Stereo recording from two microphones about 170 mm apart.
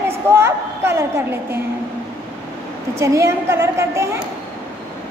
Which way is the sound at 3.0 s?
15° right (ahead or behind).